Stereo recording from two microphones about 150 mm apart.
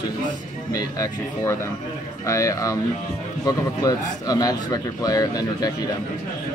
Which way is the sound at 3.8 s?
25° left (ahead or behind).